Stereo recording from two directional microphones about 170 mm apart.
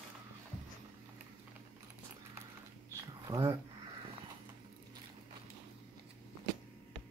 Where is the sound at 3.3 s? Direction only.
20° right (ahead or behind).